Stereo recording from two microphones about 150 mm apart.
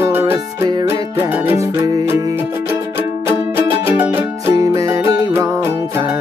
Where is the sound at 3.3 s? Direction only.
15° right (ahead or behind).